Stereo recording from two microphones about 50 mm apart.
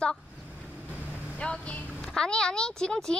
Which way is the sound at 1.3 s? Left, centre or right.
Left.